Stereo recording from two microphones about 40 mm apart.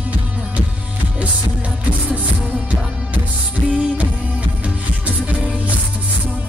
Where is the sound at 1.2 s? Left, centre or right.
Right.